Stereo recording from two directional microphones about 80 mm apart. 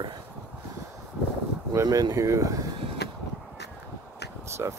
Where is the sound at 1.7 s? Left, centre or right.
Right.